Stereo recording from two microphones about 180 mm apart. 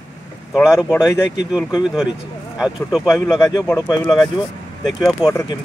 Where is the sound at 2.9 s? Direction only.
Centre (ahead or behind).